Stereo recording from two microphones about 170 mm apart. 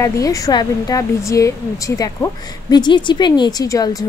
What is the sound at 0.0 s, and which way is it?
Speech, 20° left (ahead or behind).